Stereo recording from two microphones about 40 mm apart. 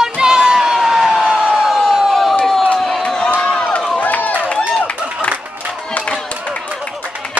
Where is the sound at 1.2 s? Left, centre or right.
Right.